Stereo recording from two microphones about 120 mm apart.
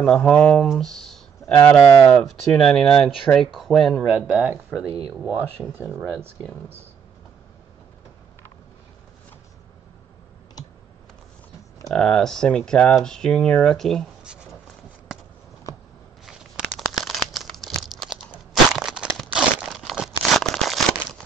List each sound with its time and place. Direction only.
0.0 s speech: 5° left (ahead or behind)
4.1 s speech: 15° right (ahead or behind)
11.9 s speech: 5° left (ahead or behind)
16.3 s a sound: 5° right (ahead or behind)
16.9 s crumpling: centre (ahead or behind)
18.3 s crushing: 5° right (ahead or behind)